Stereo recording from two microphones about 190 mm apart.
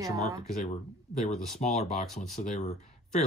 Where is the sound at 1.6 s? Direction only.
35° left (ahead or behind).